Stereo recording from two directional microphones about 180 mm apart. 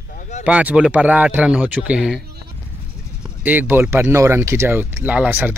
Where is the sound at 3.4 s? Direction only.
10° right (ahead or behind).